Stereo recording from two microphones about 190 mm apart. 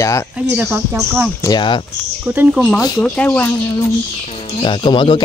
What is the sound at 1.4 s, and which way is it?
Speech, 25° left (ahead or behind).